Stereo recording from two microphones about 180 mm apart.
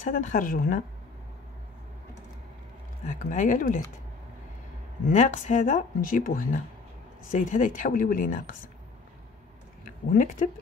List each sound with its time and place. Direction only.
0.0 s speech: 50° left (ahead or behind)
3.1 s speech: 45° left (ahead or behind)
5.0 s speech: 45° left (ahead or behind)
10.0 s speech: 50° left (ahead or behind)